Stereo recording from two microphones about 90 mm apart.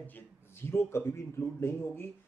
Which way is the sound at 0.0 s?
25° left (ahead or behind).